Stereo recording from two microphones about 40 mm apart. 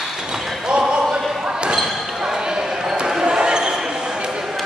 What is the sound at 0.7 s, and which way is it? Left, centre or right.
Basketball bounce, right.